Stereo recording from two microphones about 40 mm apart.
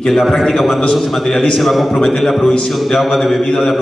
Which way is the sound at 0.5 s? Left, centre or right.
Centre.